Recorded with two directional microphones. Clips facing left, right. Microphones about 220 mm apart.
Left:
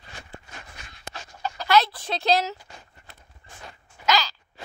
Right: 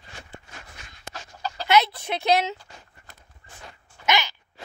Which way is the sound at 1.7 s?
20° right (ahead or behind).